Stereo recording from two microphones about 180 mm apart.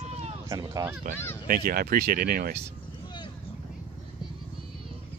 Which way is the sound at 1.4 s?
55° right (ahead or behind).